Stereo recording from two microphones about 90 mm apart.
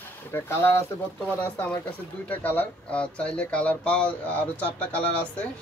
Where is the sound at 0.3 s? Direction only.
30° left (ahead or behind).